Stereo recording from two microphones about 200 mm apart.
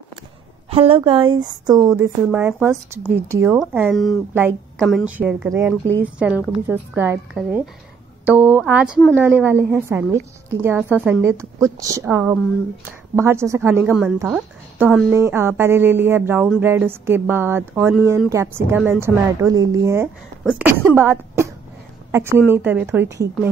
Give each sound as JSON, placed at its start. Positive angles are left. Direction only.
{"t": 0.7, "sound": "a woman's voice", "side_deg": -30}
{"t": 3.9, "sound": "speech", "side_deg": 0}
{"t": 4.3, "sound": "speech", "side_deg": -10}
{"t": 4.7, "sound": "speech", "side_deg": 0}
{"t": 21.0, "sound": "a sound", "side_deg": -10}
{"t": 22.1, "sound": "a woman's voice", "side_deg": -10}